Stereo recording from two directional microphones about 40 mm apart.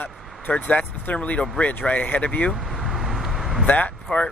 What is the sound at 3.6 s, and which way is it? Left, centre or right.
Speech, left.